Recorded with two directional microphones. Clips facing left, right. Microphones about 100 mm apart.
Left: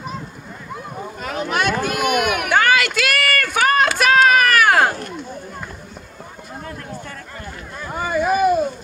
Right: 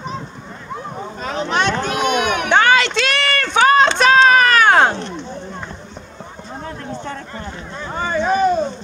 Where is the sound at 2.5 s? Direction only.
25° right (ahead or behind).